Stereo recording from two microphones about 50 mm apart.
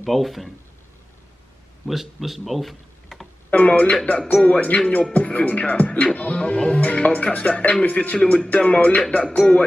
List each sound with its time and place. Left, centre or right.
0.0 s speech: centre
1.9 s speech: centre
3.4 s speech: left
4.4 s music: left